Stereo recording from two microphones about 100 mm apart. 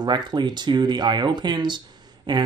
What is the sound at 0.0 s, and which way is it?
Speech, 45° right (ahead or behind).